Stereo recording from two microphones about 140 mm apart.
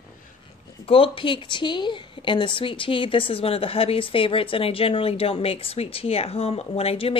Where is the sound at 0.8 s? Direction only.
40° left (ahead or behind).